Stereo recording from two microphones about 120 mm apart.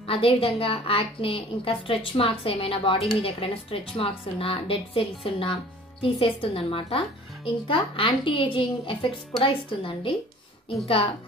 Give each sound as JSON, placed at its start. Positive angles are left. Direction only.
{"t": 0.0, "sound": "a woman's voice", "side_deg": 50}